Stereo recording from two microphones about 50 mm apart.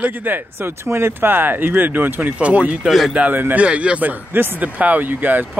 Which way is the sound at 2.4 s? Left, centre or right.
Right.